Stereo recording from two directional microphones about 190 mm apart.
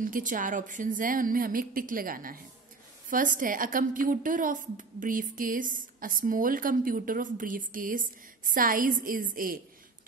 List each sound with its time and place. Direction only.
0.0 s a woman's voice: 45° right (ahead or behind)